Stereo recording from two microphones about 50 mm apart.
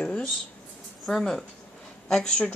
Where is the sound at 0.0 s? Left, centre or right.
Centre.